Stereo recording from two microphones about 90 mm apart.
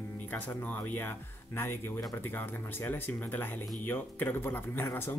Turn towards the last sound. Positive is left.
turn(degrees=25)  # may be behind; listen again after turning